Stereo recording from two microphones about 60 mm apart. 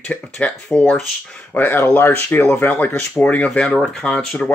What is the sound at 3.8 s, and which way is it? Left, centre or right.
Speech, centre.